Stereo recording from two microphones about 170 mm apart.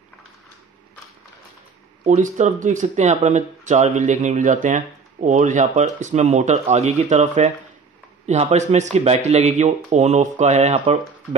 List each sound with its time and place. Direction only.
2.0 s speech: 45° right (ahead or behind)